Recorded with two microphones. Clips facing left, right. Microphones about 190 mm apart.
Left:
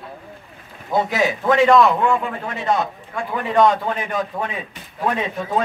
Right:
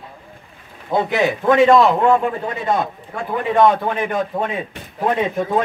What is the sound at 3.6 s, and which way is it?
Speech, 55° right (ahead or behind).